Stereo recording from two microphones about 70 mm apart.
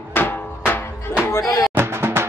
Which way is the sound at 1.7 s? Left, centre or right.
Right.